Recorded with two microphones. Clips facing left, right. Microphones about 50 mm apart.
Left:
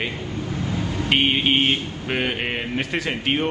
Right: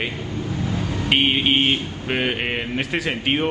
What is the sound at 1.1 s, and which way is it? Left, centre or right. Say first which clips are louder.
A man's voice: right 1 dB; centre.